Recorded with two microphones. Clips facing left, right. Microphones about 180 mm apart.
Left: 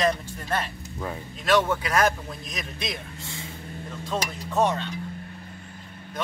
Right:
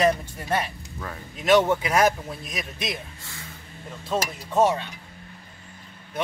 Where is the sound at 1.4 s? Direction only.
20° right (ahead or behind).